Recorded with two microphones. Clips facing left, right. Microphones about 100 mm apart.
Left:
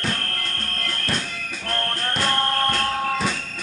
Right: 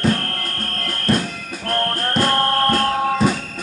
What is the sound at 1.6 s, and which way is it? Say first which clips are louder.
Music: right 6 dB; 10° right (ahead or behind).